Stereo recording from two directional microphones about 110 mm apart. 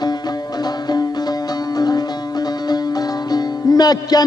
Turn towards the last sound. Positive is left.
turn(degrees=40)  # may be behind; listen again after turning